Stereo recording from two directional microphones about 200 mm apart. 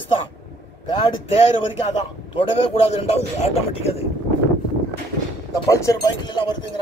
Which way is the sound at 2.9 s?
30° left (ahead or behind).